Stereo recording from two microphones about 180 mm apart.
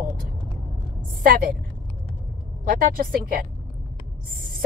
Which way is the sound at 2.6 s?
50° right (ahead or behind).